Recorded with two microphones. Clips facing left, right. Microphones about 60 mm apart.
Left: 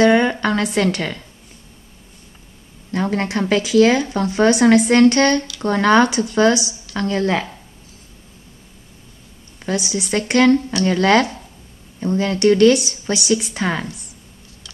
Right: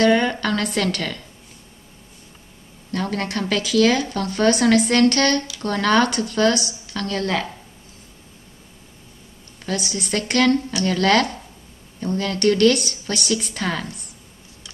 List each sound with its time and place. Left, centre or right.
0.0 s a sound: centre
0.7 s speech: centre
2.9 s speech: centre
9.7 s speech: centre